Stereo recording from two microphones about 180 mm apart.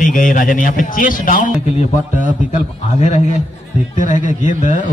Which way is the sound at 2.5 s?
40° left (ahead or behind).